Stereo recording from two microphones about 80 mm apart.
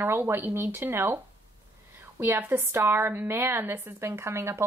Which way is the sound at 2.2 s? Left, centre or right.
Right.